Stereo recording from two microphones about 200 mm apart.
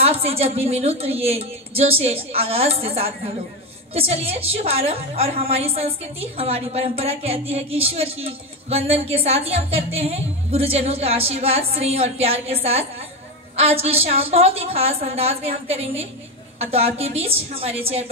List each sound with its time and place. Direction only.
0.0 s a woman's voice: 30° right (ahead or behind)